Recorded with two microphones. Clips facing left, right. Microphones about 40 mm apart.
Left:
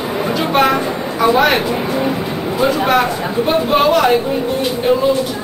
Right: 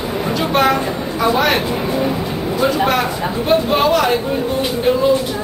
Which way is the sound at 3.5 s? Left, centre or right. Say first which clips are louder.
Left 1 dB; centre.